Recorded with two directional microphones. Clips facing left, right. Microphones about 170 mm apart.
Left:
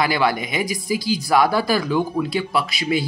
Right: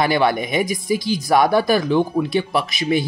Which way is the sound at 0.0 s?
25° right (ahead or behind).